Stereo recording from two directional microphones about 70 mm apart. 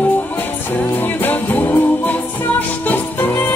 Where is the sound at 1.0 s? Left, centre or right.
Left.